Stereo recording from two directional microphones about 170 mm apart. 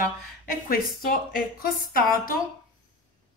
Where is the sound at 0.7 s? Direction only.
60° left (ahead or behind).